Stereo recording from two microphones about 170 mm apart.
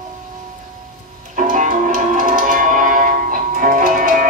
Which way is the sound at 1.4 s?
50° right (ahead or behind).